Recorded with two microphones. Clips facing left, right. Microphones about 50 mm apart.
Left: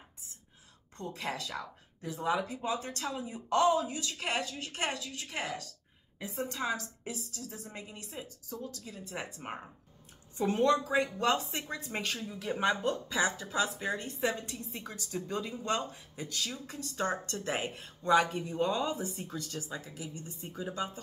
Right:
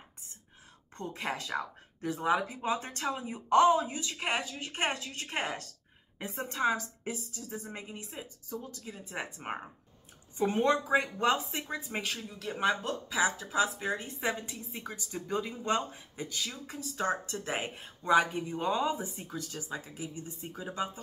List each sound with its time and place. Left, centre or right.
0.9 s speech: right
2.2 s speech: right
5.0 s a woman's voice: right
11.3 s speech: centre
18.9 s speech: right
19.1 s speech: centre